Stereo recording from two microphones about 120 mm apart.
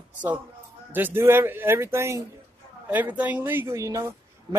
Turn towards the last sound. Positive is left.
turn(degrees=-25)  # may be behind; listen again after turning